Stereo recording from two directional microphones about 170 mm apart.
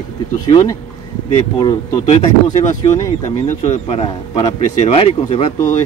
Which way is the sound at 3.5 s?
40° left (ahead or behind).